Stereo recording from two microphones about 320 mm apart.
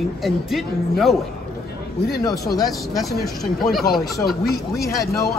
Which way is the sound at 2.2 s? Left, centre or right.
Centre.